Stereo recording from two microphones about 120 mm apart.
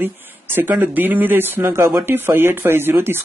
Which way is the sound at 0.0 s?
15° right (ahead or behind).